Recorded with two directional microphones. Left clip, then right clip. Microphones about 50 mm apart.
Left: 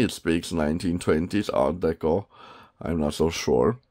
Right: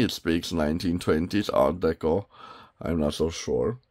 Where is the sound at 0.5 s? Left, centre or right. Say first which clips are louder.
Left 1 dB; left.